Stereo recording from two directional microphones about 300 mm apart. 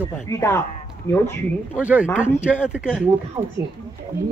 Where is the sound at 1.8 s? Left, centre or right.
Centre.